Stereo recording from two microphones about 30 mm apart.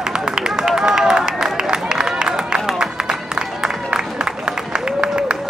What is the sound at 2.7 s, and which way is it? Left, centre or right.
Music, right.